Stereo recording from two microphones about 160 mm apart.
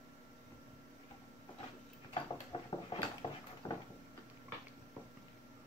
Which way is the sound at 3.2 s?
40° left (ahead or behind).